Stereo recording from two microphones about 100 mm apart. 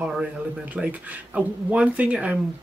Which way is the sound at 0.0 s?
10° right (ahead or behind).